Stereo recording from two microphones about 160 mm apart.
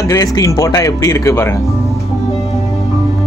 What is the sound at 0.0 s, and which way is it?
Speech, 20° left (ahead or behind).